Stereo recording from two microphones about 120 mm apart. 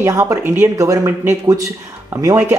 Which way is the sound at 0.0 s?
25° right (ahead or behind).